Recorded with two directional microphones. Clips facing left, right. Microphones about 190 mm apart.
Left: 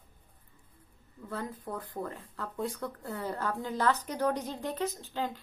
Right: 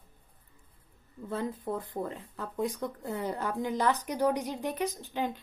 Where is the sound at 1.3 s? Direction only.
25° right (ahead or behind).